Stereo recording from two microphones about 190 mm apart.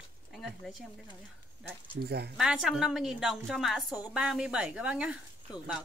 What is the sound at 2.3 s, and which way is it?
A woman's voice, 5° right (ahead or behind).